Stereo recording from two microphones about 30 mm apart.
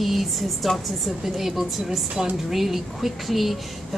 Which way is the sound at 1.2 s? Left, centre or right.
Centre.